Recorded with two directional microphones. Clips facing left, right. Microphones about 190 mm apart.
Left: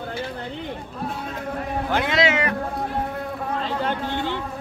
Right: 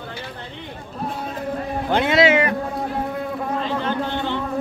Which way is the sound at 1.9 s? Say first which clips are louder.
Right 5 dB; 25° right (ahead or behind).